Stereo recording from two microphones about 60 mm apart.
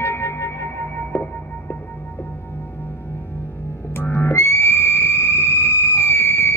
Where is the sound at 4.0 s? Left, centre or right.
Left.